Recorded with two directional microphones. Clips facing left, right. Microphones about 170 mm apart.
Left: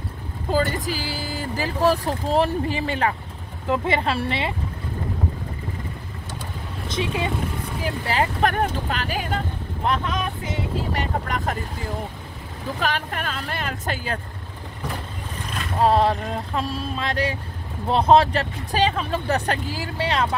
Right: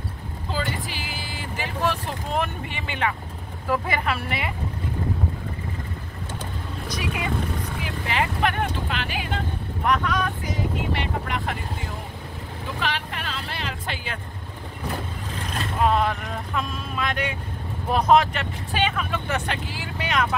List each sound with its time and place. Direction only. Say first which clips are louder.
0.5 s speech: left 7 dB; 45° left (ahead or behind)
3.6 s a woman's voice: left 3 dB; 25° left (ahead or behind)
6.9 s a woman's voice: left 4 dB; 25° left (ahead or behind)
7.8 s speech: left 4 dB; 35° left (ahead or behind)
9.8 s a woman's voice: right 1 dB; 25° left (ahead or behind)
10.9 s speech: left 1 dB; 45° left (ahead or behind)
12.8 s speech: left 4 dB; 45° left (ahead or behind)
15.8 s speech: left 4 dB; 30° left (ahead or behind)